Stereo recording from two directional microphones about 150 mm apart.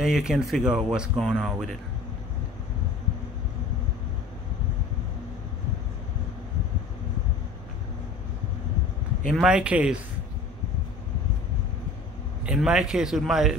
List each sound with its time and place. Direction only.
0.0 s speech: 5° right (ahead or behind)
9.2 s speech: 5° right (ahead or behind)
12.4 s speech: 5° right (ahead or behind)